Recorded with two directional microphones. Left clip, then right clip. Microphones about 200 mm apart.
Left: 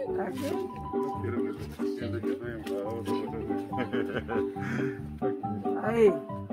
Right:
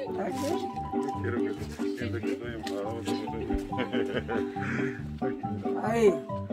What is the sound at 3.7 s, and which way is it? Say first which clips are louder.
Speech: right 2 dB; 60° left (ahead or behind).